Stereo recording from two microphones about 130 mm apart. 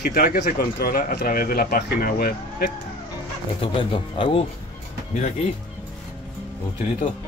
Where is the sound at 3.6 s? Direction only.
40° left (ahead or behind).